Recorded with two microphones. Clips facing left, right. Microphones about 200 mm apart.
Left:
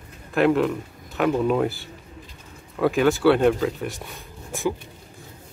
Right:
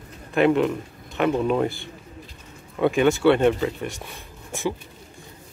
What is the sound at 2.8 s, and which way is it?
Speech, centre (ahead or behind).